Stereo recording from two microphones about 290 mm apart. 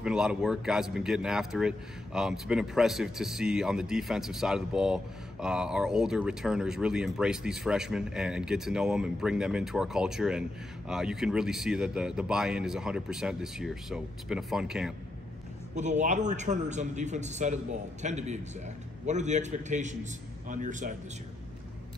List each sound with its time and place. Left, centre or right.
0.0 s speech: centre
15.7 s a man's voice: right